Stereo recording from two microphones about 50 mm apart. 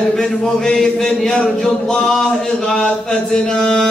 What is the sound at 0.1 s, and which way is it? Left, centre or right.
Speech, centre.